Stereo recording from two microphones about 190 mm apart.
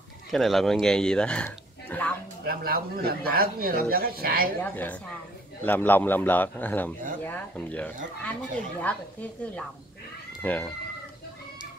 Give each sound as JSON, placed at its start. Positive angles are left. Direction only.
{"t": 0.3, "sound": "speech", "side_deg": 0}
{"t": 2.4, "sound": "speech", "side_deg": -50}
{"t": 5.7, "sound": "speech", "side_deg": 10}